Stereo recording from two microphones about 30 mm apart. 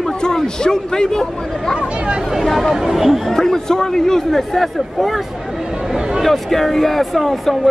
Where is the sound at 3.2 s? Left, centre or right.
Centre.